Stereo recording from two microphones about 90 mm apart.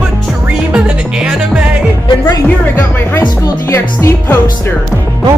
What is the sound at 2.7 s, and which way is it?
Speech, 25° left (ahead or behind).